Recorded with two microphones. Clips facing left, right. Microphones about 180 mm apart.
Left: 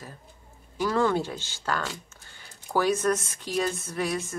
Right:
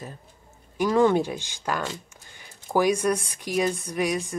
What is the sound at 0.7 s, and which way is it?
Speech, 15° right (ahead or behind).